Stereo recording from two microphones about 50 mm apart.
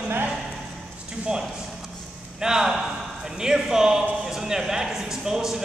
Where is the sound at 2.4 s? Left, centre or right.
Centre.